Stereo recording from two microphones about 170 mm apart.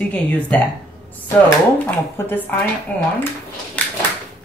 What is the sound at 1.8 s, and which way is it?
Speech, 10° left (ahead or behind).